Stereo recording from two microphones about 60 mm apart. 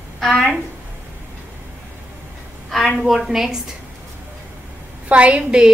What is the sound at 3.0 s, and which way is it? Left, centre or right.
Speech, centre.